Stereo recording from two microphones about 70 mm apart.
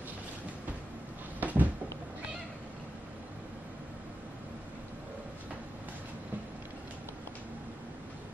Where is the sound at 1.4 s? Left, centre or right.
Right.